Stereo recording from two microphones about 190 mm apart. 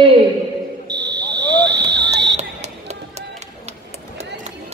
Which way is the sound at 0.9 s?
60° right (ahead or behind).